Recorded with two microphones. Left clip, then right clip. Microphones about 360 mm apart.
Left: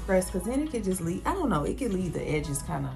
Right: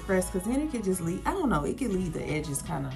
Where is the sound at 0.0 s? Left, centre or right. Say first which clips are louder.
Left 2 dB; centre.